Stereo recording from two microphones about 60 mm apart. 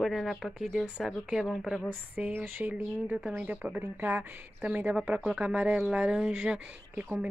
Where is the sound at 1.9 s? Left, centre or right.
Right.